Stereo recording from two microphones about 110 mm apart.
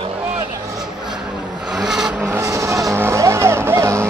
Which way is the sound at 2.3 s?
30° right (ahead or behind).